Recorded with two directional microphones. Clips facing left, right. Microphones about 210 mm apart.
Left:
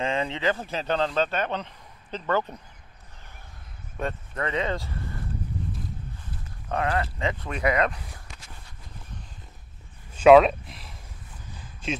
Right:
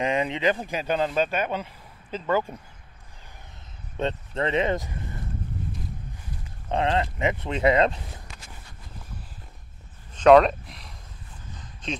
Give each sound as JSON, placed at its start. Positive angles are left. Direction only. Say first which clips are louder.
{"t": 0.0, "sound": "speech", "louder": "right 2 dB", "side_deg": -15}
{"t": 3.9, "sound": "speech", "louder": "right 3 dB", "side_deg": -25}
{"t": 6.7, "sound": "speech", "louder": "right 2 dB", "side_deg": -20}
{"t": 10.1, "sound": "speech", "louder": "left 1 dB", "side_deg": 5}
{"t": 11.5, "sound": "a sound", "louder": "left 2 dB", "side_deg": 5}